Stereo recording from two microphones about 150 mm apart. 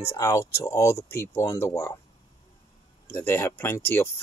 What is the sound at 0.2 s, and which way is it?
Speech, 20° left (ahead or behind).